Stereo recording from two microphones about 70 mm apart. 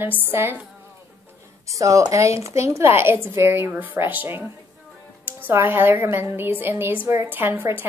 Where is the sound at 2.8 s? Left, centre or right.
Right.